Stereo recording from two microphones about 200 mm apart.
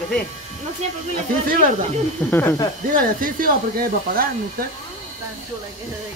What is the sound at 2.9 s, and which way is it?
Speech, 45° right (ahead or behind).